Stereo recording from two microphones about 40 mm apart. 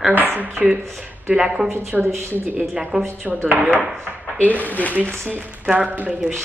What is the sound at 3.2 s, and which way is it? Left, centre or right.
Speech, right.